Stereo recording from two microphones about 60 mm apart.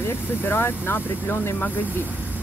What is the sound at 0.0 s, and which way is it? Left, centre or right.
Speech, left.